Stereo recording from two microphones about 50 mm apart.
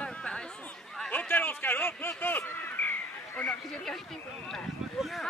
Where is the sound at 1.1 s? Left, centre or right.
Left.